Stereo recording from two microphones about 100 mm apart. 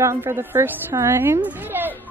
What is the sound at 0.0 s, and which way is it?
A woman's voice, 25° right (ahead or behind).